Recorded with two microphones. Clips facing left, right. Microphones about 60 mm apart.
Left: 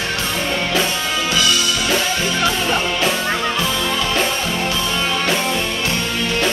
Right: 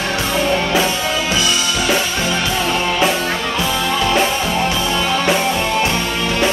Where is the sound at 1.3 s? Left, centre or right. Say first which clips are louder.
Even; right.